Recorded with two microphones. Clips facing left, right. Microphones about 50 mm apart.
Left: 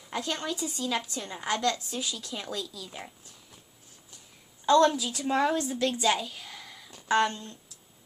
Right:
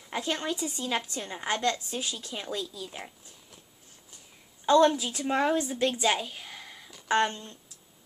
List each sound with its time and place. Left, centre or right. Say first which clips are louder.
0.1 s a woman's voice: right 1 dB; centre
4.6 s a woman's voice: even; centre